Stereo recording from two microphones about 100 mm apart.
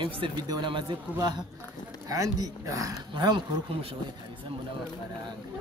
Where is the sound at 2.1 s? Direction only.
40° right (ahead or behind).